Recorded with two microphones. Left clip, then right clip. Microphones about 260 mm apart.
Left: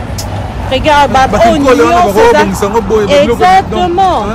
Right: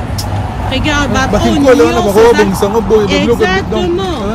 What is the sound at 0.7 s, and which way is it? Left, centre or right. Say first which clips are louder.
Speech: left 7 dB; centre.